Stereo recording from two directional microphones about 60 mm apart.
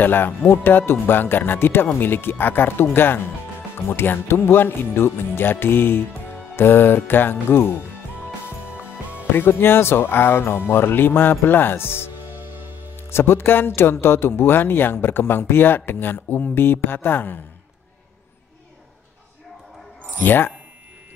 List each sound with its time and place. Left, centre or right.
0.0 s speech: left
9.3 s speech: left
12.3 s music: right
12.9 s speech: left
20.2 s speech: left